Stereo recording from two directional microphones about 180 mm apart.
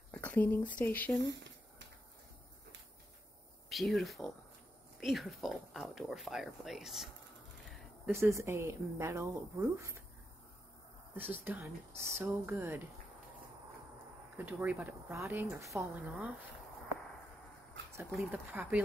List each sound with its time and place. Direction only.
0.1 s a sound: 10° left (ahead or behind)
0.7 s speech: 10° left (ahead or behind)
1.2 s speech: 90° right
3.6 s speech: centre (ahead or behind)
8.1 s a woman's voice: 15° right (ahead or behind)
11.4 s a woman's voice: 10° right (ahead or behind)
14.3 s a woman's voice: 10° right (ahead or behind)
18.1 s a woman's voice: 10° right (ahead or behind)